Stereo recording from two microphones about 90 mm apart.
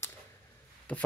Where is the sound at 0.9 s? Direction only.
15° left (ahead or behind).